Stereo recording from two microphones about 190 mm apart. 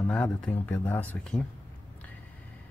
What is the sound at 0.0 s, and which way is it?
Speech, 5° left (ahead or behind).